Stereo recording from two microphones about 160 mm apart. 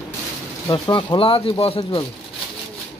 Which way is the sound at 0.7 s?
30° left (ahead or behind).